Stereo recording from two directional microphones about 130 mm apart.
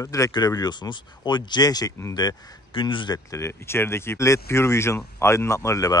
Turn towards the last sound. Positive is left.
turn(degrees=25)  # may be behind; listen again after turning